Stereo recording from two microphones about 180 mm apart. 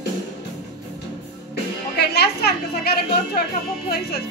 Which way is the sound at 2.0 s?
60° left (ahead or behind).